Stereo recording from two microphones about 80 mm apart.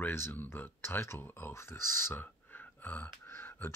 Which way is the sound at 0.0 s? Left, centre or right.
Left.